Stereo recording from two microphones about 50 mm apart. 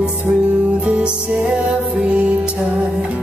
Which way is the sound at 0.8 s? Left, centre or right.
Right.